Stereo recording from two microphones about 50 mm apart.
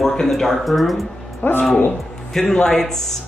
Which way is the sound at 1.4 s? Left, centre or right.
Left.